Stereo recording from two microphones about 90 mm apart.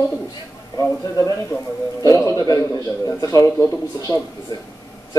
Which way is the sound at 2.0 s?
35° left (ahead or behind).